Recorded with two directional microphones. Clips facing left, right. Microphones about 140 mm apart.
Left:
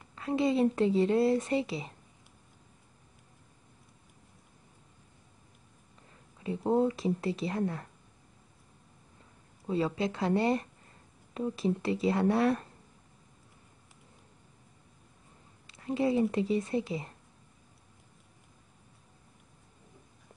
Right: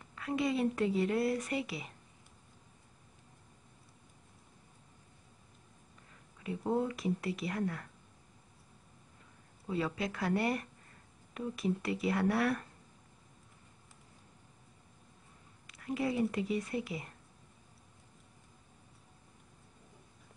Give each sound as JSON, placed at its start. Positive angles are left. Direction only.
{"t": 0.1, "sound": "speech", "side_deg": 30}
{"t": 6.4, "sound": "speech", "side_deg": 30}
{"t": 9.7, "sound": "speech", "side_deg": 30}
{"t": 15.6, "sound": "speech", "side_deg": 25}